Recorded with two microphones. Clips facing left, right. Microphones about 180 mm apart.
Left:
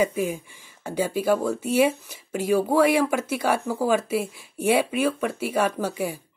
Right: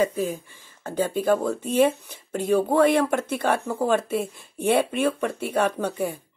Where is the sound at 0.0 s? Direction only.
15° left (ahead or behind).